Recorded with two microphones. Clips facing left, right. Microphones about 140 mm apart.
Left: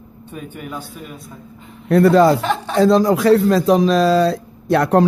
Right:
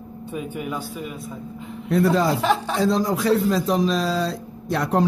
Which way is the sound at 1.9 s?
70° left (ahead or behind).